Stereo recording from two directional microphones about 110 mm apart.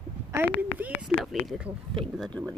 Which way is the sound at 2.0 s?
10° left (ahead or behind).